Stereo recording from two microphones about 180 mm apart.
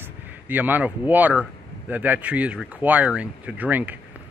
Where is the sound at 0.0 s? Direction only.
10° right (ahead or behind).